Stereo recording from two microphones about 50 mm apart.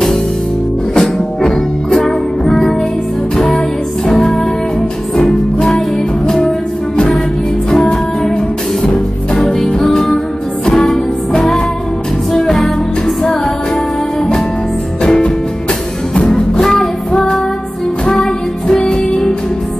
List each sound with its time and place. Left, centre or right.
0.9 s music: centre
6.2 s music: centre
9.8 s music: centre
15.0 s music: centre
16.5 s music: centre